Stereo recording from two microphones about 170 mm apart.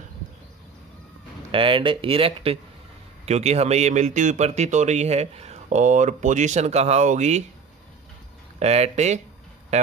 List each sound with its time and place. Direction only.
1.5 s a man's voice: 30° right (ahead or behind)
8.5 s speech: 40° right (ahead or behind)